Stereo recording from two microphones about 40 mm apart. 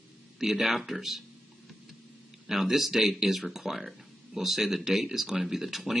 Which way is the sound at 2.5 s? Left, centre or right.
Centre.